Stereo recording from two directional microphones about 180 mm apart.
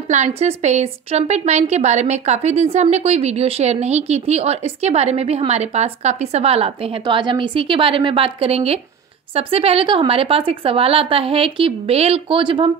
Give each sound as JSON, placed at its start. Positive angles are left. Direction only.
{"t": 0.1, "sound": "a woman's voice", "side_deg": -40}